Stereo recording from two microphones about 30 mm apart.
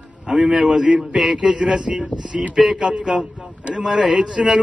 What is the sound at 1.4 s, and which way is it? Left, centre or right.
Speech, centre.